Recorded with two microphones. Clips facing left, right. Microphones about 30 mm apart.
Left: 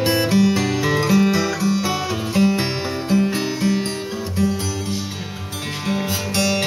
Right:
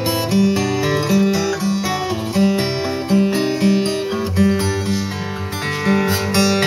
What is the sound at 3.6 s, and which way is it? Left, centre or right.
Music, right.